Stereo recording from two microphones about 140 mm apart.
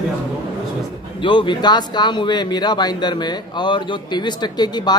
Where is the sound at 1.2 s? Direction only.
35° left (ahead or behind).